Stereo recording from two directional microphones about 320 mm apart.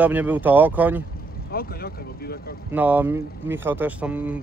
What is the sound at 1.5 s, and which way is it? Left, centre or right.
Speech, left.